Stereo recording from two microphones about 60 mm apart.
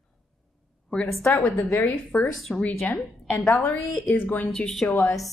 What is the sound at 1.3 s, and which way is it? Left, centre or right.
Speech, left.